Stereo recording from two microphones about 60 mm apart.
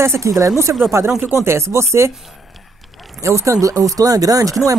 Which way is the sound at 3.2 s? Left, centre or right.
Right.